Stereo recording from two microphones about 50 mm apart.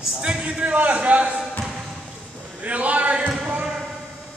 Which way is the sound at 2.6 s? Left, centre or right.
Right.